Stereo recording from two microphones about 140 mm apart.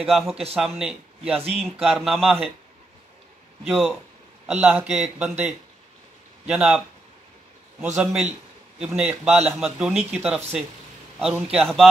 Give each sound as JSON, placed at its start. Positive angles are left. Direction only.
{"t": 0.0, "sound": "speech", "side_deg": 0}
{"t": 3.6, "sound": "speech", "side_deg": -5}
{"t": 6.4, "sound": "speech", "side_deg": -5}
{"t": 7.8, "sound": "a man's voice", "side_deg": -5}